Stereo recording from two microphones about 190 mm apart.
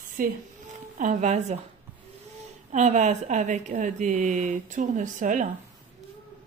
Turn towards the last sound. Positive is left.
turn(degrees=-40)  # may be behind; listen again after turning